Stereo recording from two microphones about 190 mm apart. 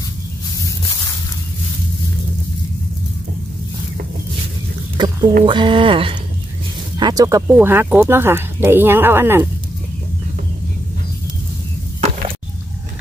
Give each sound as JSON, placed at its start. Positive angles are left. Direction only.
{"t": 4.9, "sound": "speech", "side_deg": -20}